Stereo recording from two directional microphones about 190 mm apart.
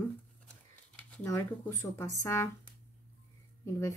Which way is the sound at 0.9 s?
10° left (ahead or behind).